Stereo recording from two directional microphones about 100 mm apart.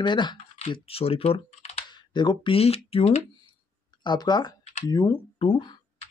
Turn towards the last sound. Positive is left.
turn(degrees=65)  # may be behind; listen again after turning